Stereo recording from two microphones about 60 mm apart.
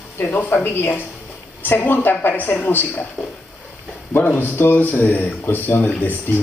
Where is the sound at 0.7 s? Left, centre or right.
Left.